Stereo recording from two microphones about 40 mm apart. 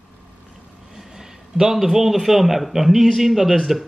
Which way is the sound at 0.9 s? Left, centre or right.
Centre.